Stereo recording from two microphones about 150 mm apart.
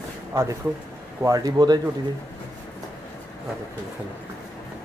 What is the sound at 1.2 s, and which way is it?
Speech, 25° right (ahead or behind).